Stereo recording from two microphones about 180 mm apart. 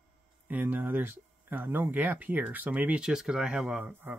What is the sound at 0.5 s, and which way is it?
Speech, 10° right (ahead or behind).